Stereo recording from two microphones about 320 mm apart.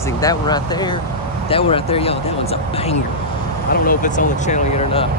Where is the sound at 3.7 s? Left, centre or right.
Left.